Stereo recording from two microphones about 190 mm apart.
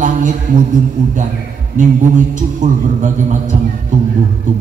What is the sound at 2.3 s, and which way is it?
A man's voice, 40° right (ahead or behind).